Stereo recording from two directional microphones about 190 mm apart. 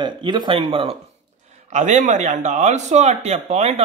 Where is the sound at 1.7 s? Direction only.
40° right (ahead or behind).